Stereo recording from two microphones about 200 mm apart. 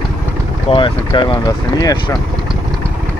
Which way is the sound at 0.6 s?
25° left (ahead or behind).